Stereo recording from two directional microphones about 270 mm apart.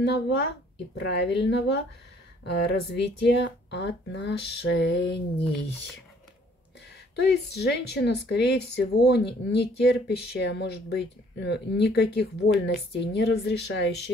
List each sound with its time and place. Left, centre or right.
0.9 s a woman's voice: left
7.2 s a woman's voice: left